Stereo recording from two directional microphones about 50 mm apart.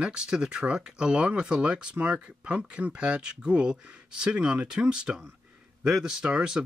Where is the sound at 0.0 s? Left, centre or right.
Centre.